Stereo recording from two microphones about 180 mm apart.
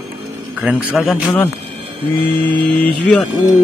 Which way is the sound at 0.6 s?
5° right (ahead or behind).